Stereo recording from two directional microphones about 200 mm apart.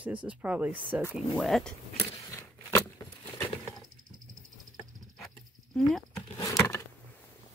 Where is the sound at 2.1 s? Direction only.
15° left (ahead or behind).